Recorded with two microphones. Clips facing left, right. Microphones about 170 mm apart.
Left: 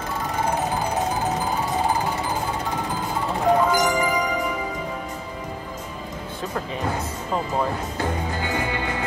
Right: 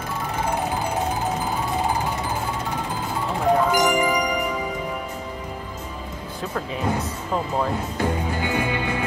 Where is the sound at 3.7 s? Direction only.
20° right (ahead or behind).